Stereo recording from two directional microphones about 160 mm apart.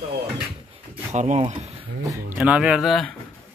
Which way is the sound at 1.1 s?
45° right (ahead or behind).